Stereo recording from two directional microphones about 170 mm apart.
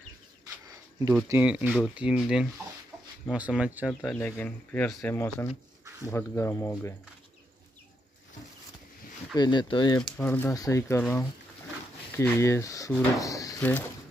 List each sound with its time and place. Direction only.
0.7 s a sound: 20° right (ahead or behind)
1.1 s speech: 10° right (ahead or behind)
4.1 s speech: 5° left (ahead or behind)
9.3 s speech: 25° left (ahead or behind)
9.9 s speech: 10° left (ahead or behind)